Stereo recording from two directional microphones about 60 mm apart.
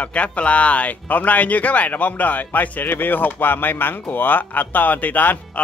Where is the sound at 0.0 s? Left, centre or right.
Left.